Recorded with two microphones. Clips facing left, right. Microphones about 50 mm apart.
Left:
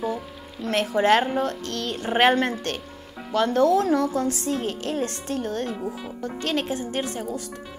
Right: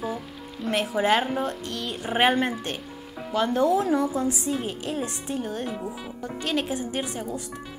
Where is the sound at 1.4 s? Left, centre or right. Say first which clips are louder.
Left 2 dB; centre.